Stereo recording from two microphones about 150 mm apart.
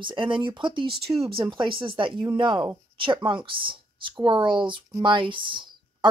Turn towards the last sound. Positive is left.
turn(degrees=-35)  # may be behind; listen again after turning